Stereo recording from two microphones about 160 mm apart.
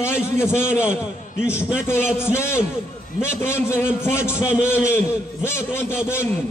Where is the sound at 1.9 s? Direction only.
15° left (ahead or behind).